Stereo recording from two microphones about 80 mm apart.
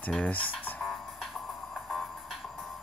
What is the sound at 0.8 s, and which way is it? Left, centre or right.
Music, centre.